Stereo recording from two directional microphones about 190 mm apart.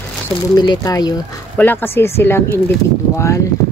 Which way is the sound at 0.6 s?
20° left (ahead or behind).